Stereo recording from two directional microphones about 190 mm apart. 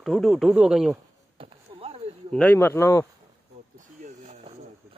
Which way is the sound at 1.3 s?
30° right (ahead or behind).